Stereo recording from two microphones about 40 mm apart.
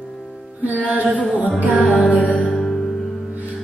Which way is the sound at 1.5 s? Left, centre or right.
Left.